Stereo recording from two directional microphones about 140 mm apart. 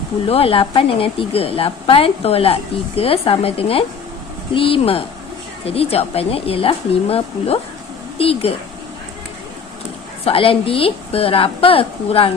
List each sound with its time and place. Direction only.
0.3 s a woman's voice: 40° left (ahead or behind)
10.2 s a woman's voice: 40° left (ahead or behind)